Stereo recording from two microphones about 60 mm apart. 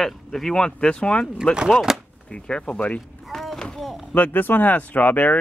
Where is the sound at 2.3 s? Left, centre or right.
Centre.